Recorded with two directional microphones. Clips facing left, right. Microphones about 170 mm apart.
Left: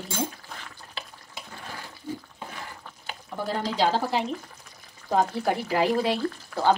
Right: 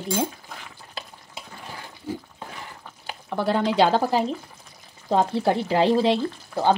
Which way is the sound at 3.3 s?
75° right (ahead or behind).